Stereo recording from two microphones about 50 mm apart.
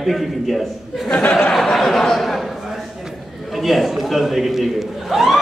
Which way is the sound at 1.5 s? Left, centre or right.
Centre.